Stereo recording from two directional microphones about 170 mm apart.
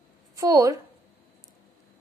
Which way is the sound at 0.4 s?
20° right (ahead or behind).